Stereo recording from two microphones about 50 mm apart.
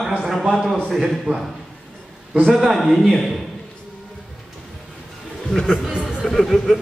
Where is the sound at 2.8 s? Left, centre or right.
Centre.